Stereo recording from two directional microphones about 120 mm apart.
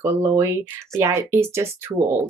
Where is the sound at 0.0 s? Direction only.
20° right (ahead or behind).